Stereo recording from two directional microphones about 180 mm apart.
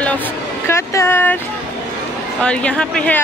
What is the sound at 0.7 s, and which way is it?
Vehicle, 15° left (ahead or behind).